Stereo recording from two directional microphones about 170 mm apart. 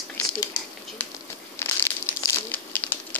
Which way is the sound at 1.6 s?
15° left (ahead or behind).